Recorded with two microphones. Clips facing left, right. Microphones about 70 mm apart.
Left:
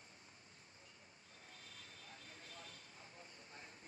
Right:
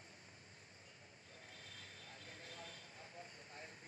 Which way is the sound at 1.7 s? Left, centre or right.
Right.